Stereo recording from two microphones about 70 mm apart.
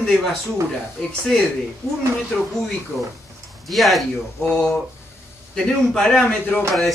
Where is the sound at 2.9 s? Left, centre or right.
Left.